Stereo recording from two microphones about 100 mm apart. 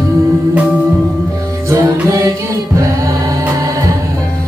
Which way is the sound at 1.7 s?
35° right (ahead or behind).